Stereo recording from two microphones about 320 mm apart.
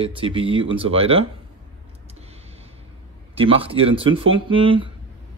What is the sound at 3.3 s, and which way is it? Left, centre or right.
Speech, centre.